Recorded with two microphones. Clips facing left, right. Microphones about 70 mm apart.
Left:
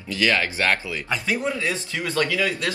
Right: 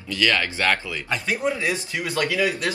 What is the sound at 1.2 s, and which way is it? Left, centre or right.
Speech, centre.